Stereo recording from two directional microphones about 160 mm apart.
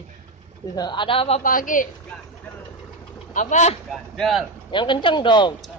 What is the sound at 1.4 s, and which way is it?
Speech, 60° left (ahead or behind).